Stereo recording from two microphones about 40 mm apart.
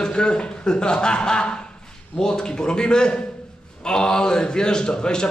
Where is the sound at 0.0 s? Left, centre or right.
Left.